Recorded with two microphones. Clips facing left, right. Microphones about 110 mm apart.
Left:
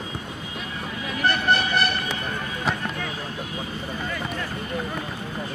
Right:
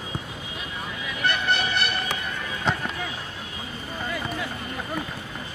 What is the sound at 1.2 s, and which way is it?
Vehicle, 40° left (ahead or behind).